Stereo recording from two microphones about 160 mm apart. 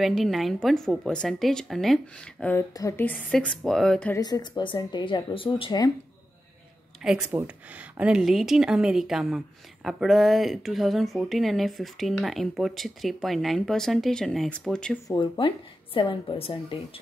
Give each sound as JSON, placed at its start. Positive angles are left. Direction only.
{"t": 0.0, "sound": "speech", "side_deg": 0}
{"t": 2.7, "sound": "speech", "side_deg": 15}
{"t": 4.1, "sound": "speech", "side_deg": 25}
{"t": 7.0, "sound": "speech", "side_deg": -5}
{"t": 15.0, "sound": "a woman's voice", "side_deg": 30}